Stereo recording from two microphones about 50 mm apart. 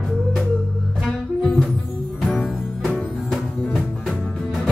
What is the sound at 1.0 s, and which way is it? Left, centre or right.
Music, centre.